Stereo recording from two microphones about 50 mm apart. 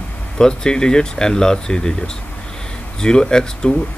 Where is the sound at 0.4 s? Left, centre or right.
Centre.